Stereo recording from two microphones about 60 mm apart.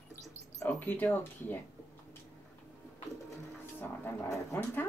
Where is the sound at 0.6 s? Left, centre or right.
Left.